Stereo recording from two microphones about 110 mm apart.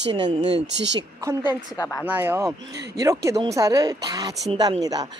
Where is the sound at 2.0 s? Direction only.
20° right (ahead or behind).